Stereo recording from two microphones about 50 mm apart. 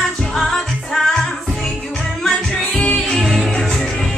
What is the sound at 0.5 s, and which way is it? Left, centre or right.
Music, centre.